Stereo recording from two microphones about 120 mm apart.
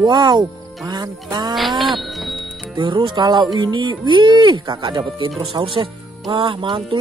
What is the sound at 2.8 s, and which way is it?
Speech, 40° right (ahead or behind).